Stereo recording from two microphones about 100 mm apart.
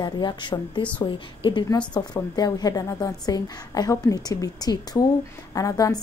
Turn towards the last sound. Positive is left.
turn(degrees=35)  # may be behind; listen again after turning